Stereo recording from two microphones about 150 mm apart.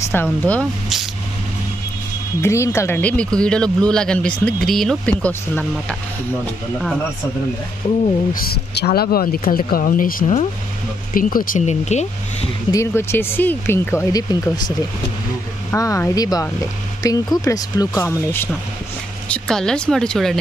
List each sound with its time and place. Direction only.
0.1 s a man's voice: 10° left (ahead or behind)
2.4 s a man's voice: 20° left (ahead or behind)
8.3 s speech: 90° left; by 12.4 s 50° left (ahead or behind)
12.7 s a man's voice: 15° left (ahead or behind)
15.7 s speech: 20° left (ahead or behind); by 20.3 s 5° left (ahead or behind)